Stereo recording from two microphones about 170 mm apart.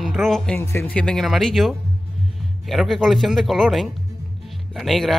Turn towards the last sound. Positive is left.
turn(degrees=0)  # may be behind; listen again after turning